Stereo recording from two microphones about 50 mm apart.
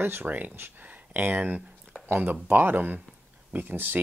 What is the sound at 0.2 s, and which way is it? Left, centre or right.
Speech, right.